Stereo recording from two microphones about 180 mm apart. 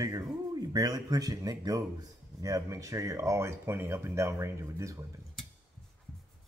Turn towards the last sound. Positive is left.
turn(degrees=-15)  # may be behind; listen again after turning